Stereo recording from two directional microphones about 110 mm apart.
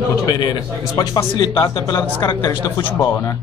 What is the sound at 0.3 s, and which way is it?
A man's voice, 40° left (ahead or behind).